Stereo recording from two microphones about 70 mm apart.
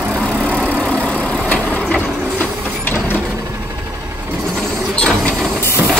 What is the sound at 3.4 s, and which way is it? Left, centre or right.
Vehicle, right.